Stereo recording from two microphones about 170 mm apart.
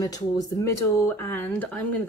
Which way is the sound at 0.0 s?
20° left (ahead or behind).